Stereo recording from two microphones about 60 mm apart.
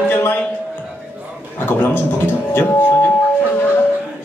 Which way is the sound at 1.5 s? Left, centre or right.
Left.